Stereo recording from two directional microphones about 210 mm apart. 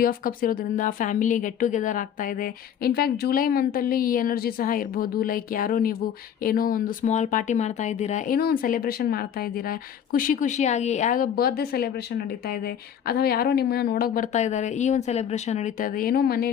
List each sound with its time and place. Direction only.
0.0 s speech: 40° left (ahead or behind)